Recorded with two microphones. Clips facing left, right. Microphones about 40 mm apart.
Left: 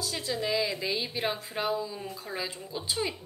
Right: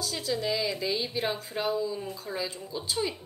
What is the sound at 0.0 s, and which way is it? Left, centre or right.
Speech, centre.